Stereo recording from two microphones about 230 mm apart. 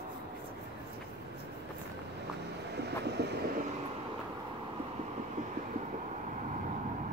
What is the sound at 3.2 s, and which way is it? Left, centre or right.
Train, right.